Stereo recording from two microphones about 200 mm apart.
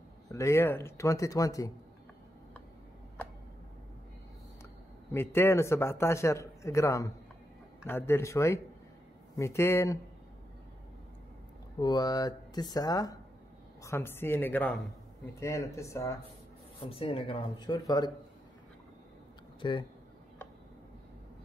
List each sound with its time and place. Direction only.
0.3 s a man's voice: 15° left (ahead or behind)
5.1 s a man's voice: 10° left (ahead or behind)
11.8 s a man's voice: 20° left (ahead or behind)
16.8 s speech: 30° left (ahead or behind)
19.6 s speech: 25° left (ahead or behind)